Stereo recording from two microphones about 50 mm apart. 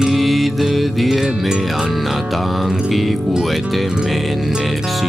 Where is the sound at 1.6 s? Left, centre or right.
Centre.